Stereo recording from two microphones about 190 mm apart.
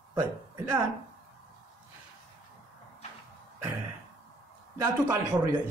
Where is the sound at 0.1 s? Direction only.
15° right (ahead or behind).